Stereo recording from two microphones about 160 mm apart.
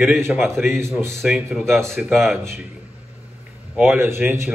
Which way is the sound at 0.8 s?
15° right (ahead or behind).